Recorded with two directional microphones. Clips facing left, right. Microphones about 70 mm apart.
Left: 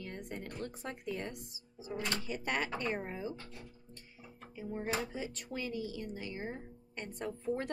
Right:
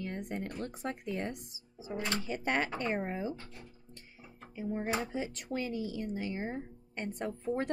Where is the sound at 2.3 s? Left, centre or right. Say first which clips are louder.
Right 5 dB; right.